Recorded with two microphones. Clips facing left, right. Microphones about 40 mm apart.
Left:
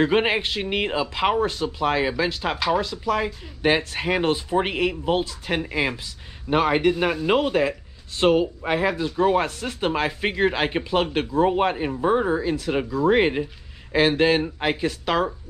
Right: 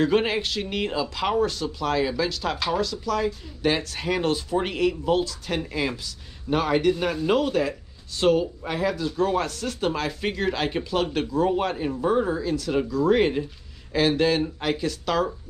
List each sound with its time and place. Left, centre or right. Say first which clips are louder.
0.0 s speech: left 2 dB; left